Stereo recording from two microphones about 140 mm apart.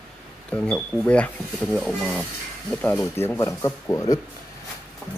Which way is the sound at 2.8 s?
15° left (ahead or behind).